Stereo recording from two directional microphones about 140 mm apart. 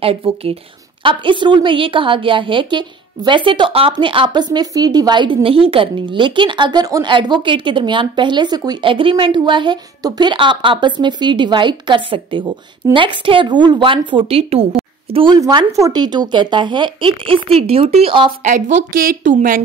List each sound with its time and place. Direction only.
0.0 s a woman's voice: 40° right (ahead or behind)
15.1 s a woman's voice: 30° right (ahead or behind)
18.4 s a woman's voice: 60° right (ahead or behind); by 19.6 s 80° right